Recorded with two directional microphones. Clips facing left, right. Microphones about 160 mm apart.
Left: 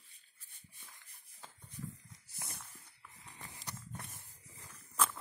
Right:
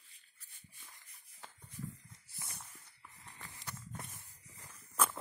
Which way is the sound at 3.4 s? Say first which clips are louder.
Even; 15° left (ahead or behind).